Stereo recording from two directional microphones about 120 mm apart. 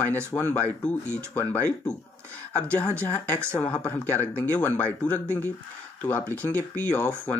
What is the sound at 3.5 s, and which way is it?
Speech, 10° left (ahead or behind).